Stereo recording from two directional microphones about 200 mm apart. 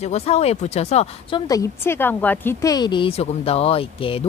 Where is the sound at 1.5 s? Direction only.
15° left (ahead or behind).